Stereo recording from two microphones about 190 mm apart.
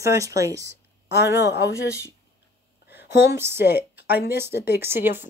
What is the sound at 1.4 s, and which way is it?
Speech, 65° left (ahead or behind).